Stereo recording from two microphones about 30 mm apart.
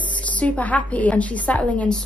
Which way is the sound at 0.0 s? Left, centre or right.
Left.